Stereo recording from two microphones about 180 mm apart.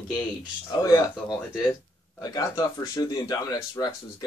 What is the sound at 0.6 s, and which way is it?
Speech, 20° left (ahead or behind).